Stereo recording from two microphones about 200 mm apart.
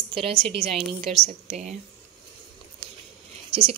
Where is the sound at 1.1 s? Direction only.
30° right (ahead or behind).